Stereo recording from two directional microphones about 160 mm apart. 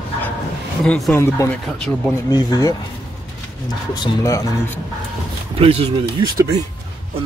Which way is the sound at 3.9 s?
25° left (ahead or behind).